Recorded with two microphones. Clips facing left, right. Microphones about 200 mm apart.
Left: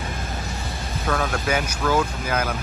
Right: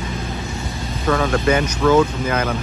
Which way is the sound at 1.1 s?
Centre (ahead or behind).